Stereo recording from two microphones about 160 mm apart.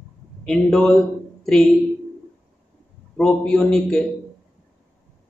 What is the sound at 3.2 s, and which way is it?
Speech, 5° left (ahead or behind).